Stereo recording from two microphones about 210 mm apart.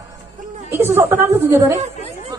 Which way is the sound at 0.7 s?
10° right (ahead or behind).